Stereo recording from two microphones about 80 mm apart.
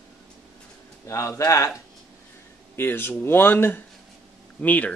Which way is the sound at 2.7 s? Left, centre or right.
Left.